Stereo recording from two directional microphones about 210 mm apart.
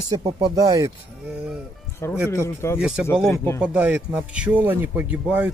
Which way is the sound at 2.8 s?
5° right (ahead or behind).